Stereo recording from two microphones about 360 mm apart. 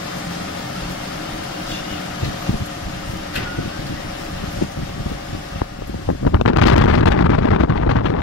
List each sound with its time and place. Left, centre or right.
6.2 s wind noise: left